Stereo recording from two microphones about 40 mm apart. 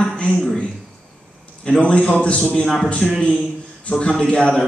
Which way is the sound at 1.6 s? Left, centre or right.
Left.